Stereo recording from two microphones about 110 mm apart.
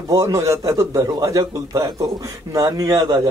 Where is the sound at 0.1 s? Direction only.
30° right (ahead or behind).